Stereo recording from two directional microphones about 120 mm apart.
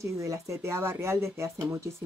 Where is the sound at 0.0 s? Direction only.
25° right (ahead or behind).